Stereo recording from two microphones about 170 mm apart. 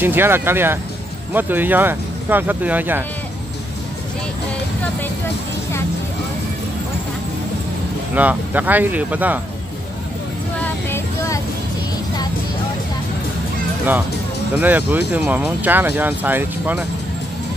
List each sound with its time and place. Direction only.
0.0 s speech: 10° right (ahead or behind)
8.1 s speech: 10° right (ahead or behind)
10.6 s vehicle: 15° left (ahead or behind)
14.6 s speech: 10° right (ahead or behind)